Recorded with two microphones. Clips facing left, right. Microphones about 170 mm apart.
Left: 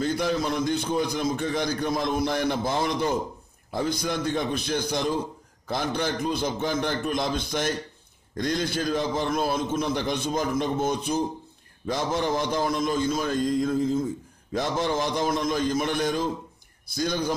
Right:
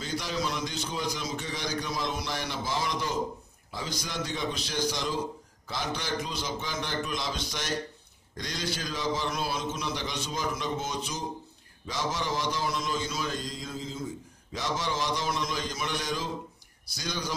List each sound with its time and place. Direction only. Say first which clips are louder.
0.0 s a man's voice: left 7 dB; 55° left (ahead or behind)